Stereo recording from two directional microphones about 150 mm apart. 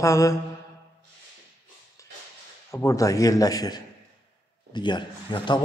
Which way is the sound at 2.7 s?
20° left (ahead or behind).